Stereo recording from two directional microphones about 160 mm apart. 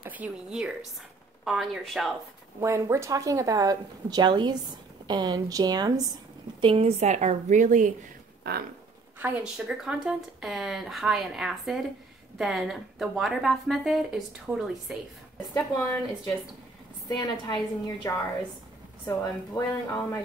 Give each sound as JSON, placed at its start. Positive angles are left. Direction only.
{"t": 0.0, "sound": "a woman's voice", "side_deg": -10}
{"t": 2.6, "sound": "speech", "side_deg": -15}
{"t": 6.6, "sound": "a woman's voice", "side_deg": -35}
{"t": 8.5, "sound": "a sound", "side_deg": -85}
{"t": 9.2, "sound": "speech", "side_deg": -10}
{"t": 15.7, "sound": "a woman's voice", "side_deg": 10}
{"t": 17.1, "sound": "a woman's voice", "side_deg": 25}